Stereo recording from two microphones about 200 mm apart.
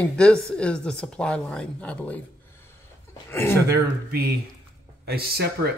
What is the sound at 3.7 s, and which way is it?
Speech, 50° right (ahead or behind).